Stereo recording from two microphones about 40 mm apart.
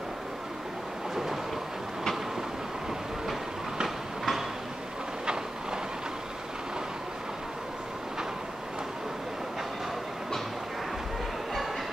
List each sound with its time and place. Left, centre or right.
1.1 s train: centre
3.8 s train: centre
5.2 s train: centre